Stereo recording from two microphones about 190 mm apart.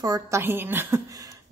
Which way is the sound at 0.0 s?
15° right (ahead or behind).